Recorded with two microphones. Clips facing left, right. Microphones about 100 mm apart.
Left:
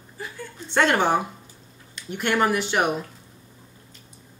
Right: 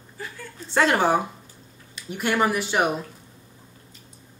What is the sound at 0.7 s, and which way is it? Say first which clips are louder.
Speech: even; 5° right (ahead or behind).